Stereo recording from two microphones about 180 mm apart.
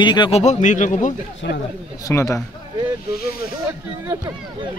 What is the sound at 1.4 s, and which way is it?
Speech, 75° left (ahead or behind).